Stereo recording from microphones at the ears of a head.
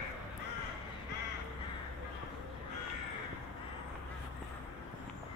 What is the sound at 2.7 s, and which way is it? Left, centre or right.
Crow, left.